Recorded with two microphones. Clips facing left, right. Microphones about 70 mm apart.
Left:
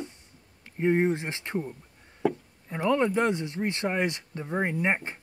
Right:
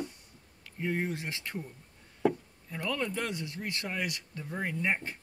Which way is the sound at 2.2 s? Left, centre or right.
Centre.